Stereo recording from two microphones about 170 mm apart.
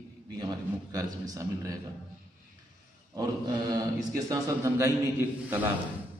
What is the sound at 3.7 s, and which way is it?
A man's voice, 20° right (ahead or behind).